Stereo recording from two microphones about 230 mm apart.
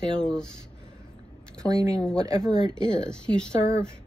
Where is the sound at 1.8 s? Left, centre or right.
Centre.